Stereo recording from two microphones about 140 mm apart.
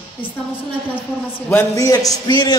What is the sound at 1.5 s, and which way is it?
A man's voice, 20° left (ahead or behind).